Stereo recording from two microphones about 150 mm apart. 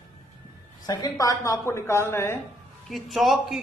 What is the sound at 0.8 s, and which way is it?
A woman's voice, 25° left (ahead or behind).